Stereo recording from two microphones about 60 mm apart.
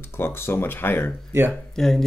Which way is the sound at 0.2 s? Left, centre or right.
Left.